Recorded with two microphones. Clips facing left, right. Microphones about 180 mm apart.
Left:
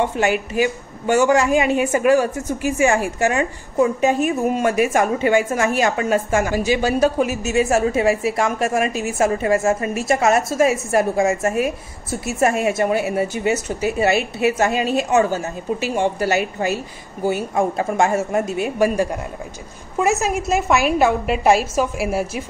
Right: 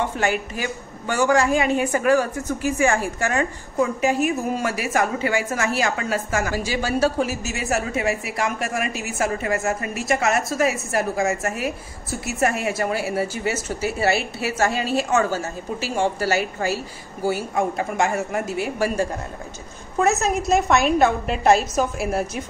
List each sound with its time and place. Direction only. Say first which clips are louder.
0.0 s a woman's voice: left 4 dB; 15° left (ahead or behind)
20.0 s a woman's voice: left 1 dB; 10° left (ahead or behind)